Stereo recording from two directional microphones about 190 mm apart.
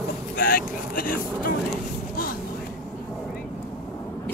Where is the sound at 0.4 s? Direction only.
50° left (ahead or behind).